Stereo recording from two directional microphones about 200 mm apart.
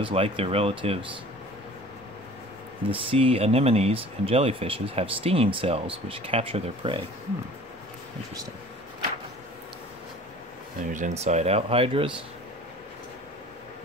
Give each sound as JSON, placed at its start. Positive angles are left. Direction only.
{"t": 0.0, "sound": "speech", "side_deg": -30}
{"t": 2.9, "sound": "speech", "side_deg": -25}
{"t": 10.9, "sound": "speech", "side_deg": -35}